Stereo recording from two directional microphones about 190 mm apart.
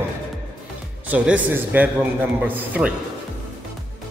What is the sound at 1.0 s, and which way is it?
A man's voice, 5° right (ahead or behind).